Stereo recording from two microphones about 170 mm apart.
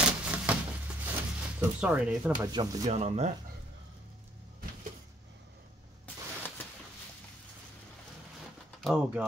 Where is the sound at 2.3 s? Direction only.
25° right (ahead or behind).